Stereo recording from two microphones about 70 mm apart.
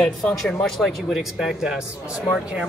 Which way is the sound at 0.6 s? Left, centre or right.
Centre.